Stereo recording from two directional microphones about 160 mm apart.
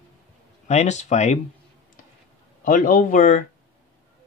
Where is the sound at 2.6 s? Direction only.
60° left (ahead or behind).